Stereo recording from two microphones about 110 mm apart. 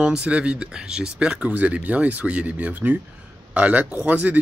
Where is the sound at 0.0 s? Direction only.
10° right (ahead or behind).